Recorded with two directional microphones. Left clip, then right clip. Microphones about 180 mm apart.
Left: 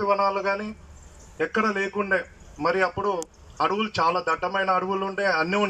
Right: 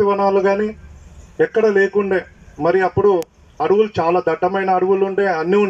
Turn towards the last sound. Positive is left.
turn(degrees=-30)  # may be behind; listen again after turning